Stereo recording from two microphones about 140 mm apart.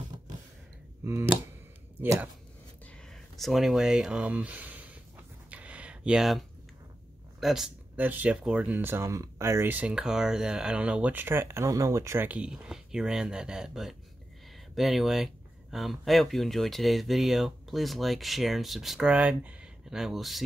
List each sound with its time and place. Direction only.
1.0 s speech: 20° right (ahead or behind)
3.1 s speech: centre (ahead or behind)
5.5 s a sound: 10° right (ahead or behind)
7.3 s speech: centre (ahead or behind)